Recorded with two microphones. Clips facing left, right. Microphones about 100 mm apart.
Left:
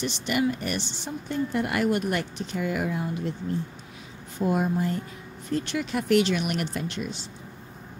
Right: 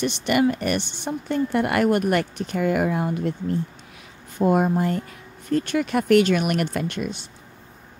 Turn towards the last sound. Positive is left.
turn(degrees=-55)  # may be behind; listen again after turning